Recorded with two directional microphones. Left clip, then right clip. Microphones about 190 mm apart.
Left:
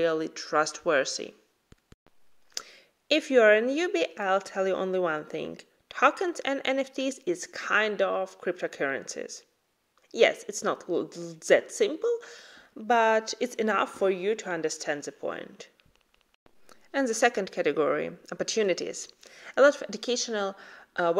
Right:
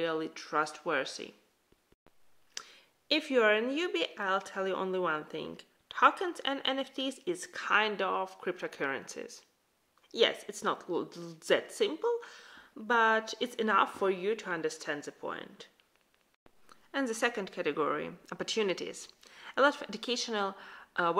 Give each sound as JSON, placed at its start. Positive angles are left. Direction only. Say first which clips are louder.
{"t": 0.0, "sound": "speech", "louder": "left 7 dB", "side_deg": 30}
{"t": 2.5, "sound": "speech", "louder": "left 6 dB", "side_deg": 25}